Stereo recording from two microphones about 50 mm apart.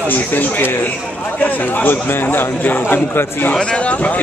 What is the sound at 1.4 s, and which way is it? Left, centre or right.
A man's voice, left.